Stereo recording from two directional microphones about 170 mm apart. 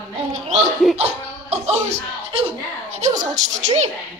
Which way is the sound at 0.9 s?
40° right (ahead or behind).